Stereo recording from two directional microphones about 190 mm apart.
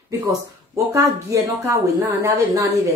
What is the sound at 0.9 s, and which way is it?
Speech, 15° right (ahead or behind).